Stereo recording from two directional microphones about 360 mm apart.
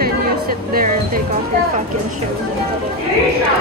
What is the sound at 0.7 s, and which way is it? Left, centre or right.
Music, right.